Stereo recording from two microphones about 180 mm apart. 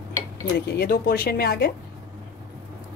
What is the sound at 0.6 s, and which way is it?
A woman's voice, 65° left (ahead or behind).